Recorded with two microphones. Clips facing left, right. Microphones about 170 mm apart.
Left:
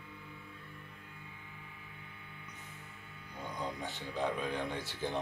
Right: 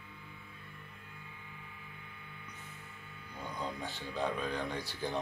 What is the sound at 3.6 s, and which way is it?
Speech, 20° left (ahead or behind).